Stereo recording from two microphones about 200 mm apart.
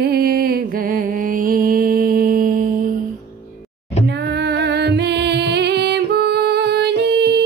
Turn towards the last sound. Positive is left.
turn(degrees=-55)  # may be behind; listen again after turning